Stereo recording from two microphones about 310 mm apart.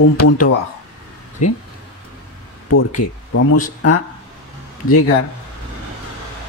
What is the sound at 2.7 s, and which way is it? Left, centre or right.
Speech, left.